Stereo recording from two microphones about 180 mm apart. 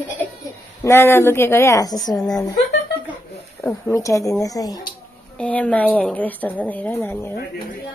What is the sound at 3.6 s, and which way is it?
A woman's voice, 15° left (ahead or behind).